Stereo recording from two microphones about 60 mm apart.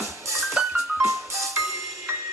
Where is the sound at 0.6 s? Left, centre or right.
Centre.